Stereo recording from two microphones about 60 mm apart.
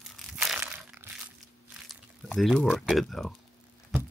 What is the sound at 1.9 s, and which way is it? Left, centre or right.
Biting, centre.